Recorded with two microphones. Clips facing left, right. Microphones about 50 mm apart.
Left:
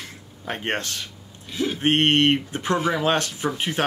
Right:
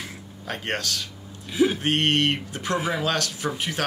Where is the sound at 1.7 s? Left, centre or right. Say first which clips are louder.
Left 3 dB; left.